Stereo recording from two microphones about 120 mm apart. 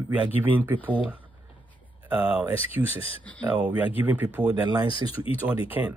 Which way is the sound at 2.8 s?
25° right (ahead or behind).